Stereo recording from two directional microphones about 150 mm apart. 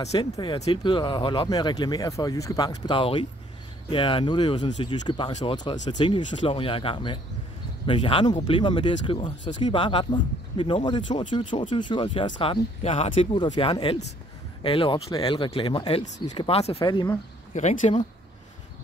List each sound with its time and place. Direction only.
0.2 s speech: 30° left (ahead or behind)
16.8 s speech: 30° left (ahead or behind)
17.6 s speech: 50° left (ahead or behind)